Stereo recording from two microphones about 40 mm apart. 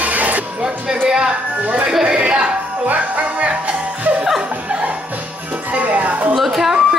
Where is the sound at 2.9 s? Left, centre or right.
Right.